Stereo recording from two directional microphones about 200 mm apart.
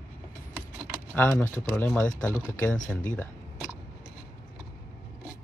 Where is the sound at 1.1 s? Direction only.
10° left (ahead or behind).